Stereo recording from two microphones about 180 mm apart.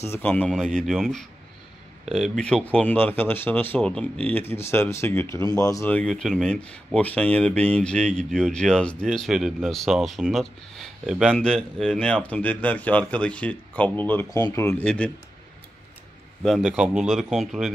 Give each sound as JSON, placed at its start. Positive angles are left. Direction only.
{"t": 0.0, "sound": "speech", "side_deg": 10}
{"t": 16.4, "sound": "speech", "side_deg": 0}